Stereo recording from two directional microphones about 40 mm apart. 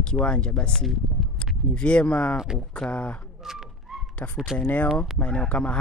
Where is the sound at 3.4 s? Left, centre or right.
Centre.